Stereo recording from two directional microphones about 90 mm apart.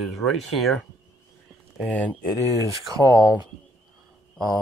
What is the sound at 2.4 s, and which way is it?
Speech, 40° right (ahead or behind).